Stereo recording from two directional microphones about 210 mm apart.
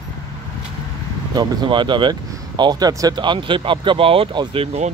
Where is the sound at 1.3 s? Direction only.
20° right (ahead or behind).